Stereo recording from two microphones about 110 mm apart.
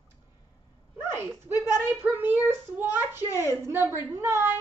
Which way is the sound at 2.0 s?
20° right (ahead or behind).